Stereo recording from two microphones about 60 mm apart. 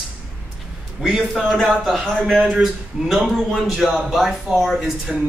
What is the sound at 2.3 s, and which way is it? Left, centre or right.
Speech, right.